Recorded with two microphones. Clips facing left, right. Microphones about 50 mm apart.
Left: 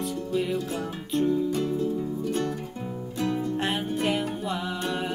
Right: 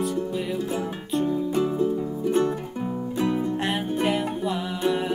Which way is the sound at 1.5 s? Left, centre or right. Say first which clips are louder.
Right 3 dB; right.